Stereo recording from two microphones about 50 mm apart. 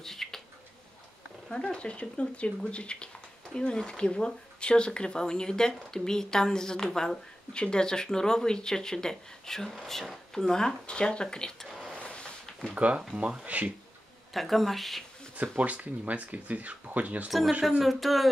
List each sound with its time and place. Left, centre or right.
0.0 s a sound: centre
1.5 s speech: left
12.7 s speech: right
14.3 s a woman's voice: centre
15.3 s speech: right
17.6 s a woman's voice: centre